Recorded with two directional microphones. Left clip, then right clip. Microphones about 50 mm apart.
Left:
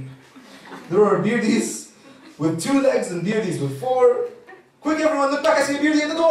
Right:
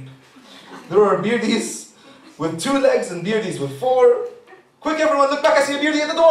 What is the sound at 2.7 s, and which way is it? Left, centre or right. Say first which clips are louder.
A man's voice: right 3 dB; centre.